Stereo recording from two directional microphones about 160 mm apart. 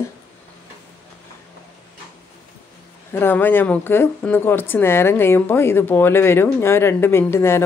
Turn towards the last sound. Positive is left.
turn(degrees=15)  # may be behind; listen again after turning